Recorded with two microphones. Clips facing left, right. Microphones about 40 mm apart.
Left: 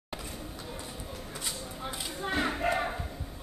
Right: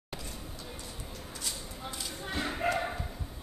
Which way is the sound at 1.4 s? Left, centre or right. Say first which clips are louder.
Left 2 dB; left.